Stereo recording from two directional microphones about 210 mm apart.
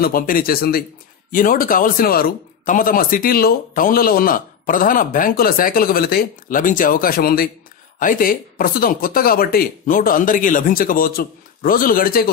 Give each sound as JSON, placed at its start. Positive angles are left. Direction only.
{"t": 0.0, "sound": "a man's voice", "side_deg": 45}